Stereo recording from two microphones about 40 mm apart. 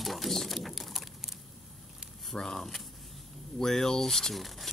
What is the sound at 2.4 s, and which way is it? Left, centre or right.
Speech, centre.